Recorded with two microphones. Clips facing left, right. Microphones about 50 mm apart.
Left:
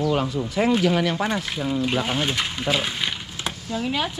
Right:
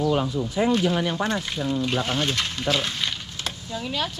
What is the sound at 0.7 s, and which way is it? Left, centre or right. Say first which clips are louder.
Speech: left 3 dB; centre.